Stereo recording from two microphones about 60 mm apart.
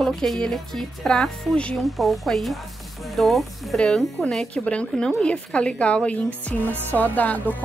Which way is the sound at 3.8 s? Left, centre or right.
Centre.